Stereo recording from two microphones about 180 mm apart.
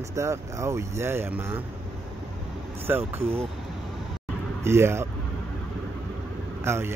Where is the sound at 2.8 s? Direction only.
10° right (ahead or behind).